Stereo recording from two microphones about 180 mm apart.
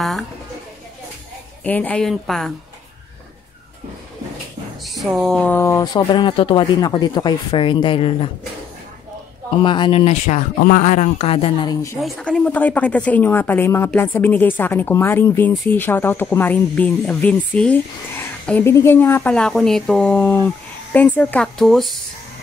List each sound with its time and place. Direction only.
1.6 s a woman's voice: 10° left (ahead or behind)
4.8 s speech: centre (ahead or behind); by 8.3 s 30° left (ahead or behind)
9.6 s speech: 25° left (ahead or behind)
12.0 s speech: 5° left (ahead or behind)